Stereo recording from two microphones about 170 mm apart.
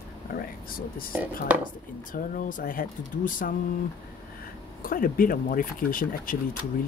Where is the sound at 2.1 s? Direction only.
50° left (ahead or behind).